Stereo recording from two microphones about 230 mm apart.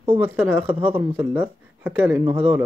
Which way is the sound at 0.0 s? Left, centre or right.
Centre.